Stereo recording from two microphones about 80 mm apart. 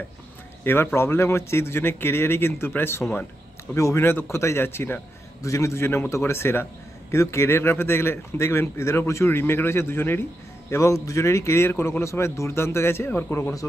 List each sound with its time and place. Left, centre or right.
0.9 s a man's voice: left
5.4 s a man's voice: left
10.7 s a man's voice: left